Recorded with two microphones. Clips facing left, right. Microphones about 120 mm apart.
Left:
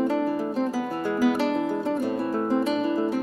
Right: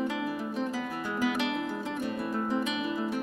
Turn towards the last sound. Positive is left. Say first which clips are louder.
# left 7 dB
turn(degrees=35)  # may be behind; listen again after turning